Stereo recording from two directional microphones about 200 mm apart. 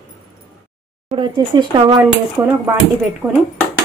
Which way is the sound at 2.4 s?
10° right (ahead or behind).